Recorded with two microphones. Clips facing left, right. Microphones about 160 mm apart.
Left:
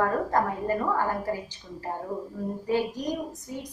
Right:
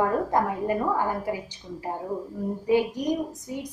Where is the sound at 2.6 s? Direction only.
15° right (ahead or behind).